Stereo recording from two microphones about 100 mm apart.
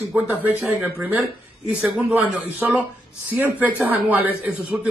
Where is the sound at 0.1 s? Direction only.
5° right (ahead or behind).